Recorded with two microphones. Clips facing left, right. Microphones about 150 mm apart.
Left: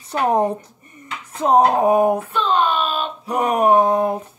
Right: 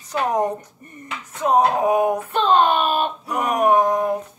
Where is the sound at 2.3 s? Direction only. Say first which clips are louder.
Right 2 dB; 55° right (ahead or behind).